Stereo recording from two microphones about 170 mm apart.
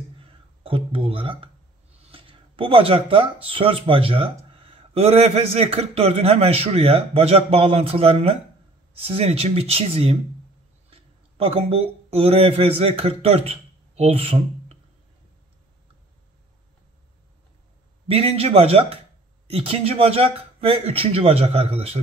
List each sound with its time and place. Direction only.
0.2 s a sound: 30° right (ahead or behind)
2.0 s speech: 30° right (ahead or behind)
18.0 s speech: 35° right (ahead or behind)